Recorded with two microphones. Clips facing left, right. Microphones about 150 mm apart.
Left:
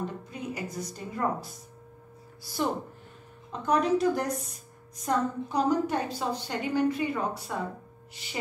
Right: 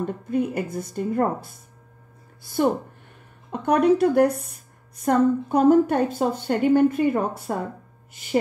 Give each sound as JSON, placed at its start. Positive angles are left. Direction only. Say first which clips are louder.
{"t": 0.0, "sound": "a woman's voice", "louder": "right 11 dB", "side_deg": -55}